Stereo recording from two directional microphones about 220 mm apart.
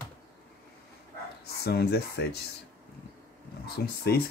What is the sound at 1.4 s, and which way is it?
Speech, 45° left (ahead or behind).